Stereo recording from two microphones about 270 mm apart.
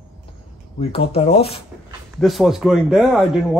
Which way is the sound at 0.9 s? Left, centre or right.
Left.